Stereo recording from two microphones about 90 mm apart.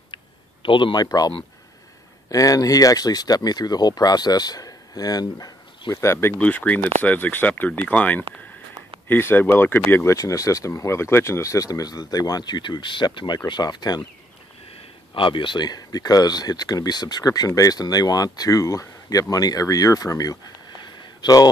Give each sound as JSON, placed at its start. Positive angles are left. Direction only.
{"t": 0.1, "sound": "a sound", "side_deg": 70}
{"t": 0.9, "sound": "speech", "side_deg": 45}
{"t": 2.3, "sound": "speech", "side_deg": 40}
{"t": 5.9, "sound": "speech", "side_deg": 30}
{"t": 6.4, "sound": "speech", "side_deg": 15}
{"t": 15.1, "sound": "speech", "side_deg": 70}
{"t": 20.8, "sound": "a sound", "side_deg": 50}